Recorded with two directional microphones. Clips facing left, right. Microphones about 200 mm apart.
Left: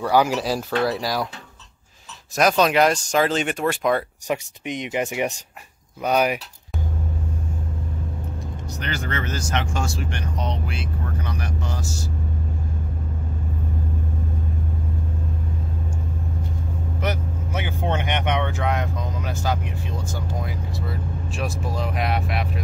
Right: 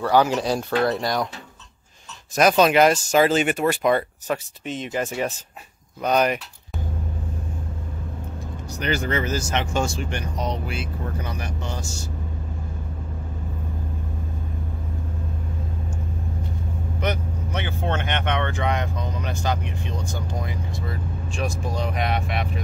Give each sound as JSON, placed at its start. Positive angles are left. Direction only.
{"t": 0.0, "sound": "speech", "side_deg": 10}
{"t": 2.3, "sound": "speech", "side_deg": 0}
{"t": 4.3, "sound": "speech", "side_deg": 15}
{"t": 8.6, "sound": "speech", "side_deg": -10}
{"t": 17.0, "sound": "speech", "side_deg": 5}